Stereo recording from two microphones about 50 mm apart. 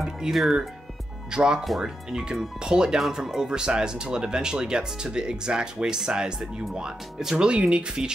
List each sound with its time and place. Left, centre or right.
0.0 s music: centre
1.3 s speech: centre
6.4 s speech: centre